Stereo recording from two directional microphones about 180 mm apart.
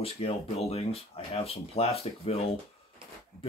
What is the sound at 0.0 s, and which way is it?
Speech, 35° left (ahead or behind).